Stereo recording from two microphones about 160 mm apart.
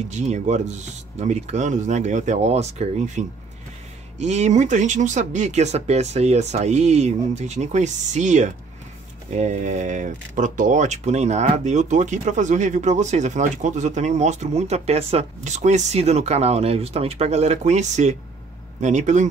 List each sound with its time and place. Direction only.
0.1 s speech: 45° right (ahead or behind)